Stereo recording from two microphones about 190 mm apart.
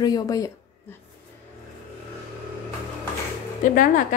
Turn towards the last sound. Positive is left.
turn(degrees=45)  # may be behind; listen again after turning